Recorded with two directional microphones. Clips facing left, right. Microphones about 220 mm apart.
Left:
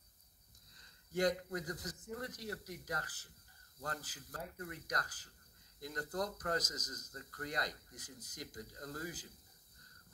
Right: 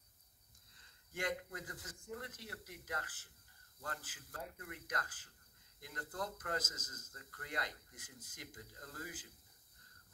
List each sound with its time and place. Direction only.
0.7 s speech: 40° left (ahead or behind)